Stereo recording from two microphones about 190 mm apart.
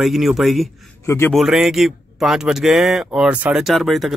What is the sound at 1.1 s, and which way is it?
Speech, 15° left (ahead or behind).